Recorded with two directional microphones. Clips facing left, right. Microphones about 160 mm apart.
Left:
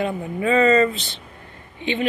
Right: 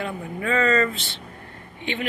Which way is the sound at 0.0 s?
20° left (ahead or behind).